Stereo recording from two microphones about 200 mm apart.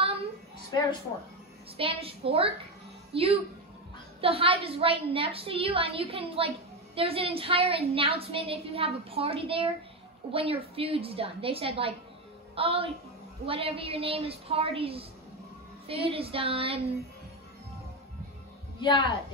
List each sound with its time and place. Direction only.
0.7 s speech: 20° left (ahead or behind)
1.8 s a woman's voice: 25° right (ahead or behind)
16.1 s a woman's voice: 30° right (ahead or behind)
18.8 s a woman's voice: 20° left (ahead or behind)